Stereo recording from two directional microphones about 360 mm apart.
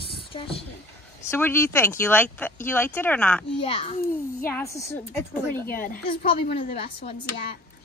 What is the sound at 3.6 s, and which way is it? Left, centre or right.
A woman's voice, centre.